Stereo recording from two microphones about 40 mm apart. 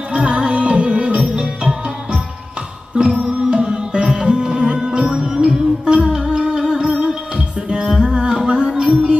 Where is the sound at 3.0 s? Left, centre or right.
Right.